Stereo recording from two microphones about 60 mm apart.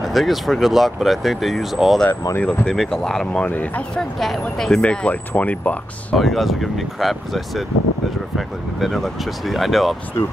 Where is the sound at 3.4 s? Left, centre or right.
Left.